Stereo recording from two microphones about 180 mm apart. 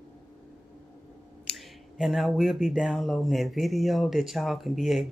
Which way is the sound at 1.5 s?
Centre (ahead or behind).